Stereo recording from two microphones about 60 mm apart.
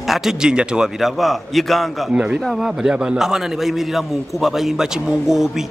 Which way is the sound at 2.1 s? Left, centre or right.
Centre.